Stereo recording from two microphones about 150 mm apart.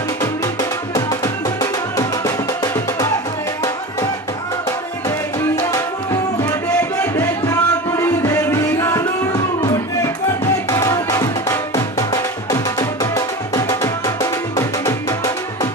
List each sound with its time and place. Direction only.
0.2 s music: 25° left (ahead or behind)
6.8 s music: 10° left (ahead or behind)
9.6 s a sound: 25° left (ahead or behind)
10.7 s music: 25° left (ahead or behind)